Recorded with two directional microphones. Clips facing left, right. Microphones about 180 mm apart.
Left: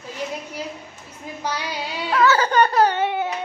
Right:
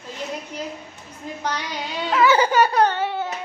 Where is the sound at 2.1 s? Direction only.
15° right (ahead or behind).